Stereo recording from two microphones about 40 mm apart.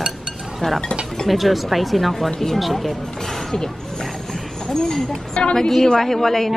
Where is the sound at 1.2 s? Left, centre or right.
Centre.